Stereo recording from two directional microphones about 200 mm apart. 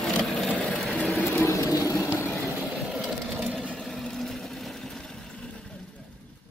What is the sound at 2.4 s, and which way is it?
Vehicle, 5° right (ahead or behind).